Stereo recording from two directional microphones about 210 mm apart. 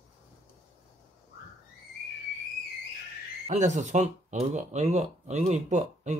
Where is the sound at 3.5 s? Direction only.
35° right (ahead or behind).